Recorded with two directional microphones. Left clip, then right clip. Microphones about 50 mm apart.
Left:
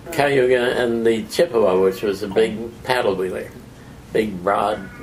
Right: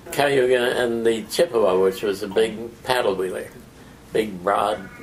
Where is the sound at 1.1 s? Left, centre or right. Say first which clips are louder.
Left 2 dB; right.